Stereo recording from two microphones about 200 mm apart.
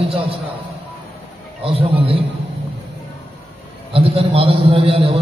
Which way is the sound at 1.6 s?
30° right (ahead or behind).